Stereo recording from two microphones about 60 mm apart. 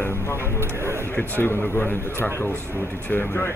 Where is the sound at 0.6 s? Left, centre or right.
Right.